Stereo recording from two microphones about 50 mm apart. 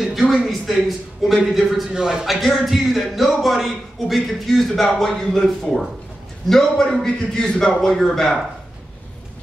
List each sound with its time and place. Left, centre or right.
0.3 s a man's voice: centre
2.0 s speech: centre
2.2 s a man's voice: centre